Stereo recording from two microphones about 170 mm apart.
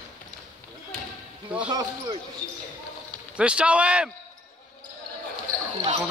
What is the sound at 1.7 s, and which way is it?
Speech, 25° right (ahead or behind).